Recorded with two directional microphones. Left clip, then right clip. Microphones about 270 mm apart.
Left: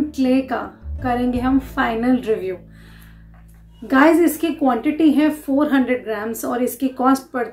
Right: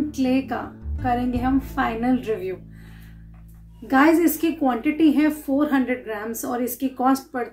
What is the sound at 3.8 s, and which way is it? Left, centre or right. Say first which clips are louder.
A woman's voice: left 3 dB; centre.